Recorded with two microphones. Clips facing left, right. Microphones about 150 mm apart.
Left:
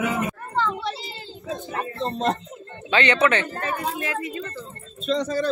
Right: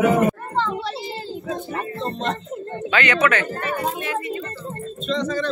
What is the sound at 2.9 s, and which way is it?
Speech, 30° left (ahead or behind).